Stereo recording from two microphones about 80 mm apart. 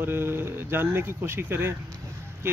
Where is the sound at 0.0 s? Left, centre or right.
Right.